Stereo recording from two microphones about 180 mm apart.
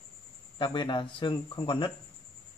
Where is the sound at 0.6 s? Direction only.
25° left (ahead or behind).